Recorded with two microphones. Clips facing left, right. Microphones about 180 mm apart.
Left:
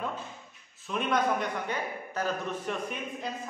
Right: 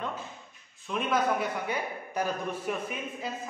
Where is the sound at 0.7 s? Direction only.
Centre (ahead or behind).